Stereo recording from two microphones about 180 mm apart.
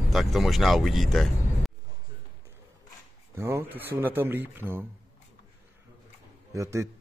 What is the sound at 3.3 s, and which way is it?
Speech, 15° right (ahead or behind).